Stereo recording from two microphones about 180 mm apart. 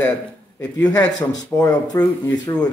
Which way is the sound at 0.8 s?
20° left (ahead or behind).